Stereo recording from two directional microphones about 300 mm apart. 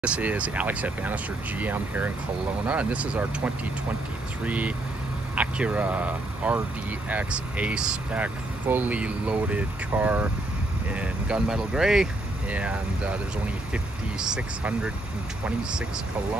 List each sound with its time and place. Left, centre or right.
0.0 s speech: centre